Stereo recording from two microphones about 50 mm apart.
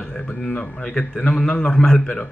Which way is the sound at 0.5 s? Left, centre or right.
Centre.